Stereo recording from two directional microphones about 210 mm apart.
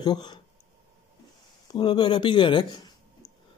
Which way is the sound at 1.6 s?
20° left (ahead or behind).